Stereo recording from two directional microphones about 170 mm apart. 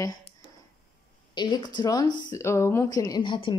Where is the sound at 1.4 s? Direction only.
25° left (ahead or behind).